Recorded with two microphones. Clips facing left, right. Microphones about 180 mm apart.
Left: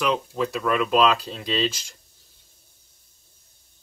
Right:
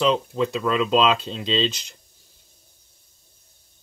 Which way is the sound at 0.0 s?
25° right (ahead or behind).